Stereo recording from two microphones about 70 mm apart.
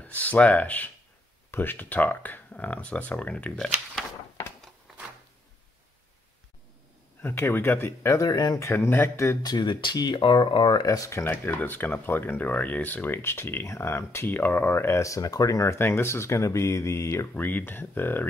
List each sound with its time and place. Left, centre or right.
0.0 s speech: left
7.2 s speech: left
8.2 s speech: left
8.5 s speech: left
9.4 s speech: left
10.7 s speech: left
11.2 s speech: left
17.3 s speech: left